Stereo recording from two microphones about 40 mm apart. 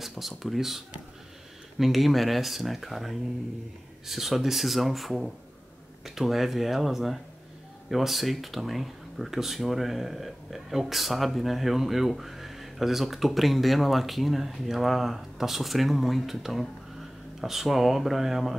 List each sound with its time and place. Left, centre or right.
0.0 s speech: centre